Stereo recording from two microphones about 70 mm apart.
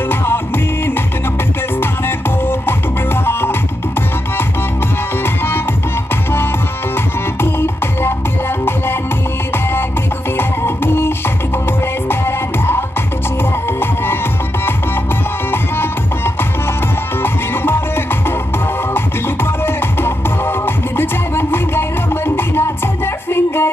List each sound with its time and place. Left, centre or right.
0.1 s music: left
1.8 s music: left
5.2 s music: left
10.3 s music: left
17.2 s music: left